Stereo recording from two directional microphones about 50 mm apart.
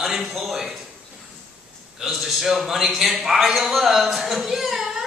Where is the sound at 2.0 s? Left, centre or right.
Centre.